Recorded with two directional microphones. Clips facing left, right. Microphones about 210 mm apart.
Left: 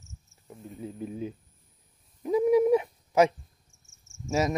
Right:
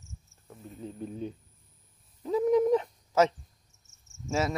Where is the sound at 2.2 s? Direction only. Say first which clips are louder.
Left 2 dB; 10° left (ahead or behind).